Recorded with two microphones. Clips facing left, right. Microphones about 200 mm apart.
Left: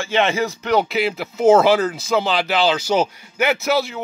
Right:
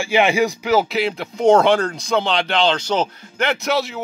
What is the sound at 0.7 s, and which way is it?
Speech, centre (ahead or behind).